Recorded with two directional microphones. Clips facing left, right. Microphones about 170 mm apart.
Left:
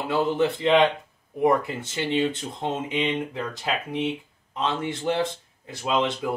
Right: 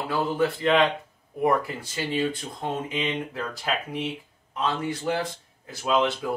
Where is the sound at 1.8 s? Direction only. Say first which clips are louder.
Left 3 dB; 25° left (ahead or behind).